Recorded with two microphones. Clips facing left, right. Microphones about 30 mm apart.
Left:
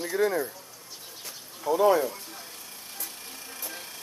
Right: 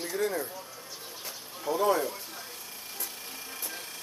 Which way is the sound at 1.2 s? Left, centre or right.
Centre.